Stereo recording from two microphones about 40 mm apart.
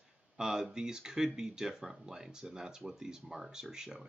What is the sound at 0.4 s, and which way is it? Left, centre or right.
Speech, centre.